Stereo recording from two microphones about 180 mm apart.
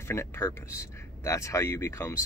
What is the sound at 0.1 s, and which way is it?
Speech, 15° left (ahead or behind).